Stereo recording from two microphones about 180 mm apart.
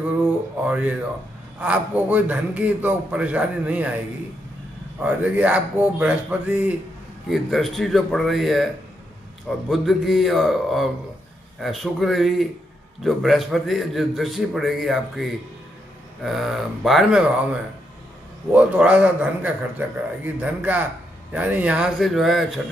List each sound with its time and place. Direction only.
0.6 s a sound: 5° right (ahead or behind)
1.6 s a man's voice: 10° right (ahead or behind)
5.0 s a man's voice: 5° right (ahead or behind)
9.7 s a man's voice: centre (ahead or behind)